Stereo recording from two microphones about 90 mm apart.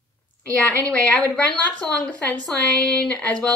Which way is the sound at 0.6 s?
15° left (ahead or behind).